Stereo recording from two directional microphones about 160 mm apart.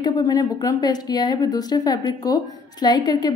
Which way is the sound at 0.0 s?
25° left (ahead or behind).